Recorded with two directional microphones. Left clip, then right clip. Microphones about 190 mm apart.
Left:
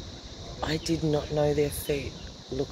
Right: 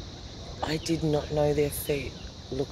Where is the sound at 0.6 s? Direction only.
5° right (ahead or behind).